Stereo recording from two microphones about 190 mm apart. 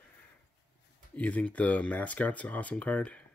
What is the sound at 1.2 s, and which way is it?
Speech, 5° left (ahead or behind).